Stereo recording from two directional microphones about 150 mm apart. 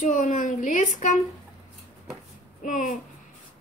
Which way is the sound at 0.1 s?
60° left (ahead or behind).